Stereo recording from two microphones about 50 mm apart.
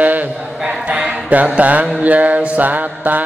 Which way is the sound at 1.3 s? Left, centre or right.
Right.